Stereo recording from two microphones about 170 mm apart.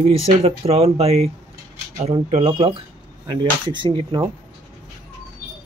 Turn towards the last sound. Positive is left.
turn(degrees=-25)  # may be behind; listen again after turning